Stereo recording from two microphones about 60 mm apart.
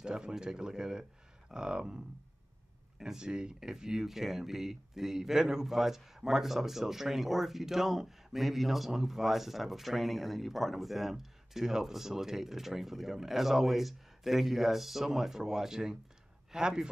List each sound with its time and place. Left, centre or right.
0.0 s speech: centre